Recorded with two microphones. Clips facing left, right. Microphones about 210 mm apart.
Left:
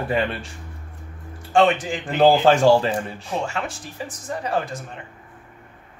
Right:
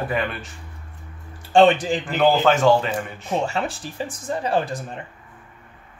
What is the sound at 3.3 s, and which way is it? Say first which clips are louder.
Speech: right 5 dB; 35° right (ahead or behind).